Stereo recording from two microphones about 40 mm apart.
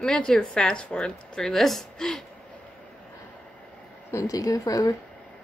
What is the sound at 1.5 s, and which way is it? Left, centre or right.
Speech, centre.